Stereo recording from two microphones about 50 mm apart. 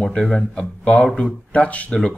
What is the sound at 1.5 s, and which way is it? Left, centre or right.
Speech, left.